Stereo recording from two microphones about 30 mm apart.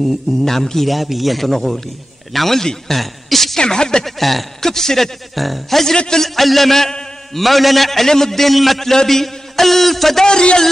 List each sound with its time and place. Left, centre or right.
0.5 s a man's voice: centre
0.8 s a man's voice: centre
3.5 s speech: left
4.0 s a man's voice: centre
5.3 s a man's voice: centre
10.2 s speech: left